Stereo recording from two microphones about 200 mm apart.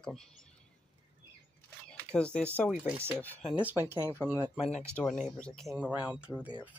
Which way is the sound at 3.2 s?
10° left (ahead or behind).